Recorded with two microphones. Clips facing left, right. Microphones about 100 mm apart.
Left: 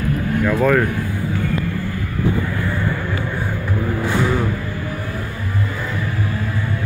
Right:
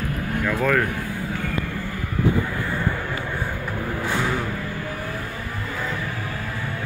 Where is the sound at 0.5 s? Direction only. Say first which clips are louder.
Left 5 dB; 20° left (ahead or behind).